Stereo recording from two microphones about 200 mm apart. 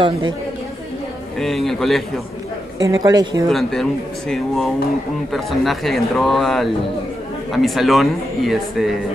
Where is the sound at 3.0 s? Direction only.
15° right (ahead or behind).